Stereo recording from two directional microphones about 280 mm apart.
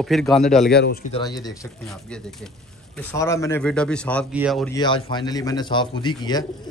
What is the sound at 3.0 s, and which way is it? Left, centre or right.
A man's voice, centre.